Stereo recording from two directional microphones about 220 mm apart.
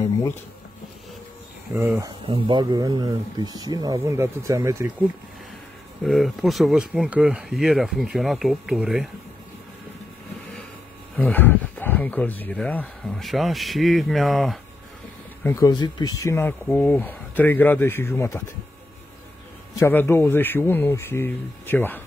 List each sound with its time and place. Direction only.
0.0 s a sound: 15° left (ahead or behind)
1.7 s speech: 10° right (ahead or behind)
6.0 s speech: centre (ahead or behind)
11.1 s speech: 5° left (ahead or behind)
15.4 s speech: 15° left (ahead or behind)
19.7 s speech: 10° left (ahead or behind)